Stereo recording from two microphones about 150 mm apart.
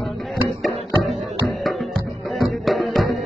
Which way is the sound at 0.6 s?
Centre (ahead or behind).